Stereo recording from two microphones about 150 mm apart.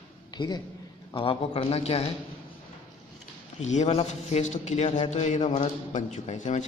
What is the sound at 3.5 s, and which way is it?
A man's voice, 50° left (ahead or behind).